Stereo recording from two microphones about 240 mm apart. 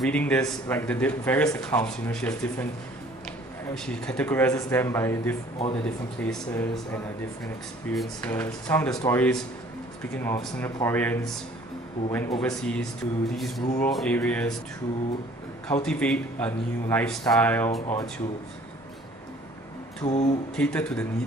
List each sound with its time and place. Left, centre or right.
0.0 s speech: centre
15.7 s speech: centre
20.1 s a sound: left
20.5 s speech: centre